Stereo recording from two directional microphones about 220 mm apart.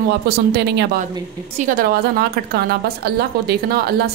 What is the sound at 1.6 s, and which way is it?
A woman's voice, 40° right (ahead or behind).